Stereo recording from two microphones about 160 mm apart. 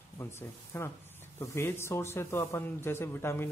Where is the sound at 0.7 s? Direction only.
15° left (ahead or behind).